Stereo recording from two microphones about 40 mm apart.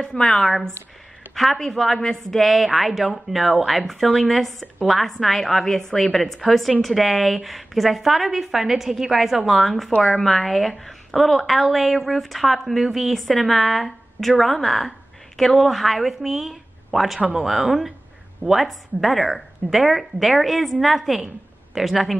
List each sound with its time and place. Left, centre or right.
0.0 s speech: left
0.4 s a woman's voice: centre